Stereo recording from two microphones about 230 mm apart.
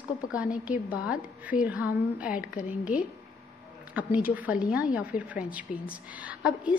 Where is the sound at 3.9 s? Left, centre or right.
Centre.